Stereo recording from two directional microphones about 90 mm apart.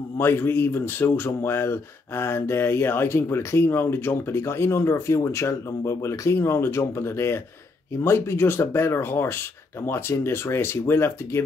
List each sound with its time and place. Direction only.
0.2 s speech: 25° left (ahead or behind)